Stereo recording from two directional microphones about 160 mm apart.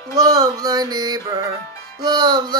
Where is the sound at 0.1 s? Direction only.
20° right (ahead or behind).